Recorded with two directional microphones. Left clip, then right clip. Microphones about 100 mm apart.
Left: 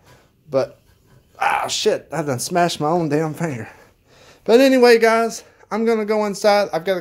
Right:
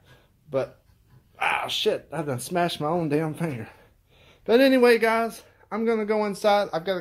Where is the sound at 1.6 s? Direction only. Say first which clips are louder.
Left 6 dB; 45° left (ahead or behind).